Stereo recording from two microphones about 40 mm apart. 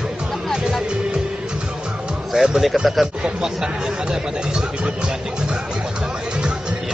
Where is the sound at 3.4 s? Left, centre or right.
Centre.